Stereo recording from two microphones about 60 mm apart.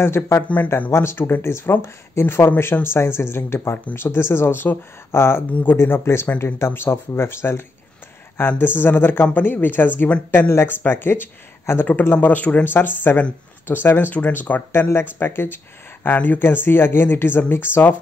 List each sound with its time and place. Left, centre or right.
0.0 s speech: left
0.4 s speech: left
0.9 s speech: left
1.5 s speech: left
2.8 s speech: left
5.5 s speech: left
5.8 s speech: left
12.7 s speech: left
14.7 s speech: left